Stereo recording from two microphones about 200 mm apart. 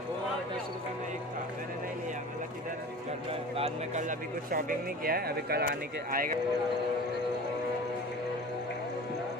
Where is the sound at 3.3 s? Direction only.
30° right (ahead or behind); by 6.4 s 45° right (ahead or behind).